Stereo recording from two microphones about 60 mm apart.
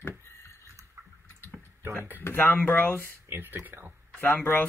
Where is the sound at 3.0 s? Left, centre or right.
Right.